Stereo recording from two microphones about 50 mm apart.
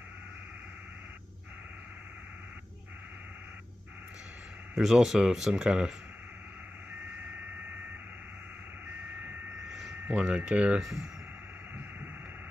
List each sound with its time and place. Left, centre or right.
4.7 s speech: centre
9.7 s a sound: centre
10.0 s speech: right